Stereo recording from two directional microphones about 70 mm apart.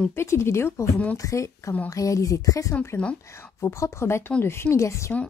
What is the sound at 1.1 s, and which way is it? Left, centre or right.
A woman's voice, left.